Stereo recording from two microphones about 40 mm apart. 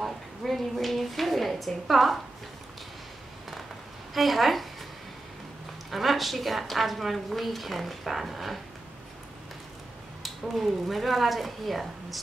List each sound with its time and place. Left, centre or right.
0.0 s a woman's voice: centre
4.1 s a woman's voice: centre
5.9 s a woman's voice: centre
10.5 s a woman's voice: centre